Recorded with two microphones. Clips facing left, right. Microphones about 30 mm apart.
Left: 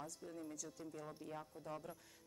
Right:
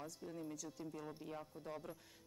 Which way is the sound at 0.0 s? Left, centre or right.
Centre.